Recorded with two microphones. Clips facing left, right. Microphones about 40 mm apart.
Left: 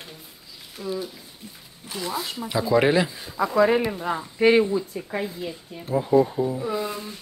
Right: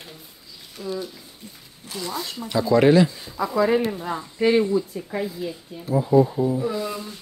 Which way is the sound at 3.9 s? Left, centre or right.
Left.